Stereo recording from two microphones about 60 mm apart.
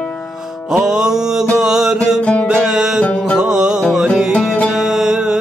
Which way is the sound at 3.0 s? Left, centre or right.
Left.